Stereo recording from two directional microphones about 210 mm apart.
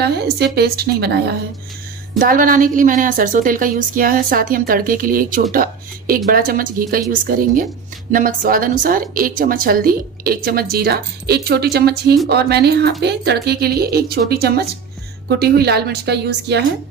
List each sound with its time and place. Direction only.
0.0 s a woman's voice: 50° right (ahead or behind)